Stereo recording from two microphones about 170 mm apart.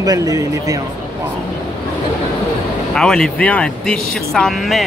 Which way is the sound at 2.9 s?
5° left (ahead or behind).